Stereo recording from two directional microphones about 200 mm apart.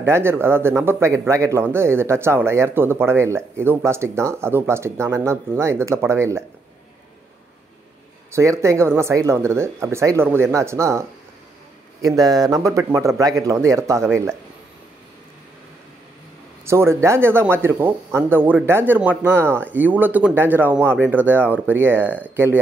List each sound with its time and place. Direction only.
0.0 s speech: 10° right (ahead or behind)
8.3 s speech: 15° right (ahead or behind)
16.6 s speech: 15° right (ahead or behind)